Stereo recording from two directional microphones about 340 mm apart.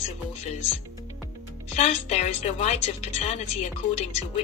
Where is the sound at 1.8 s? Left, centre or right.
Centre.